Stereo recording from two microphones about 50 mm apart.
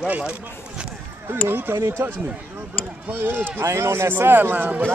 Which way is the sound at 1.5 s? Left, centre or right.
Right.